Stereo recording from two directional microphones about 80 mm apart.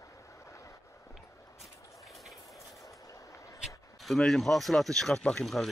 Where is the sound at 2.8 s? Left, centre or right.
Left.